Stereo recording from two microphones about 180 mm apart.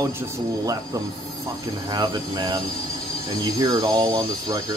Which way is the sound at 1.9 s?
25° right (ahead or behind).